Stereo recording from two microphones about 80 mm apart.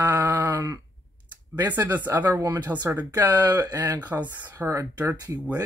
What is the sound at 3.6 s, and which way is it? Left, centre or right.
Speech, right.